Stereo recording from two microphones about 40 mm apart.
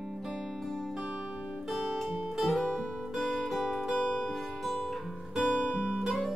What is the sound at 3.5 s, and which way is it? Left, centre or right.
Music, centre.